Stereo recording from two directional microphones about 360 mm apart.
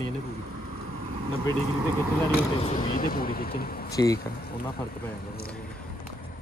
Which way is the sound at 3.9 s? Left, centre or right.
Centre.